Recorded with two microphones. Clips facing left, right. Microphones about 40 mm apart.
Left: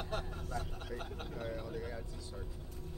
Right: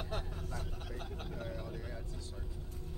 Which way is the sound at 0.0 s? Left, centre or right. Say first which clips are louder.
Left 1 dB; centre.